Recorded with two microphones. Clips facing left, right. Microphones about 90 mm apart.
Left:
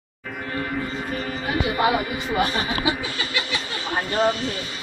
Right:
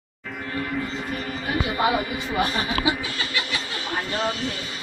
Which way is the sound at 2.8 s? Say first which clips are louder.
Right 1 dB; 90° right.